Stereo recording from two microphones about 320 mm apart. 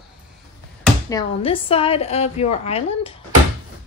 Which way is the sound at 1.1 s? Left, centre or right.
Centre.